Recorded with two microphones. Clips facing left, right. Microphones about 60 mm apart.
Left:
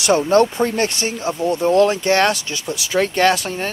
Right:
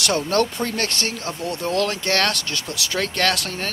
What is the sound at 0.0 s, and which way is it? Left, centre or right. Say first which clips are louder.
Speech: left 6 dB; centre.